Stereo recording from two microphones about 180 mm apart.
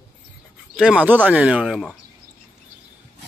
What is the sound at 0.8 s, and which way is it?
Speech, 5° right (ahead or behind).